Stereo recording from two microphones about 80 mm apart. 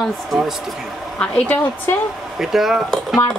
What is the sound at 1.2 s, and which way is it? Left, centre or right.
Speech, left.